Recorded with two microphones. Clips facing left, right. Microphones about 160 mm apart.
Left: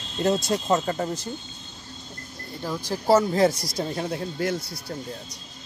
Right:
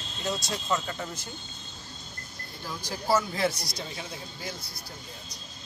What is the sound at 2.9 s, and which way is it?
Speech, 40° left (ahead or behind).